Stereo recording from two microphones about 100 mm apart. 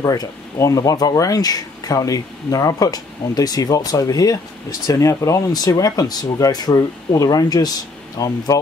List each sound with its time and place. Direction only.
0.0 s speech: 35° left (ahead or behind)